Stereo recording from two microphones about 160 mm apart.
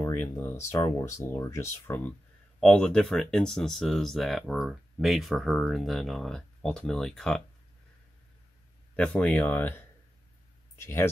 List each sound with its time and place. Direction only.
0.0 s speech: 15° left (ahead or behind)
8.9 s speech: 10° left (ahead or behind)